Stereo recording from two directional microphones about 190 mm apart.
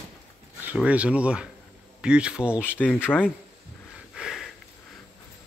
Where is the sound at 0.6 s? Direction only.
10° right (ahead or behind).